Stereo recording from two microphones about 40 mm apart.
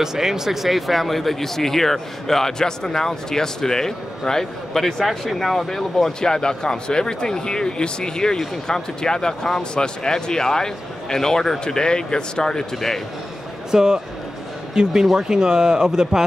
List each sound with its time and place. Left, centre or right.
0.0 s speech: centre
13.7 s speech: centre
15.1 s speech: centre